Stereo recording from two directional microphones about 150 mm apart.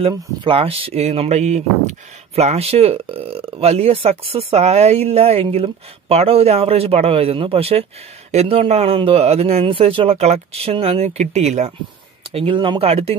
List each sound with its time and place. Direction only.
0.0 s speech: 35° right (ahead or behind)
12.4 s speech: 35° right (ahead or behind)